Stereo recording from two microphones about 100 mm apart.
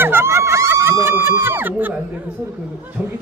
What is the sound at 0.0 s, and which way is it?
Speech, 25° right (ahead or behind).